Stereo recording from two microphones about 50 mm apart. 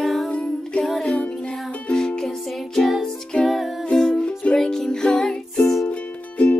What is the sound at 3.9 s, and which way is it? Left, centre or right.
Music, centre.